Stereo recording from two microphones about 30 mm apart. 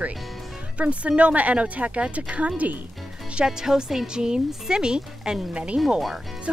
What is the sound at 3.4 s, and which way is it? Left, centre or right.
Speech, centre.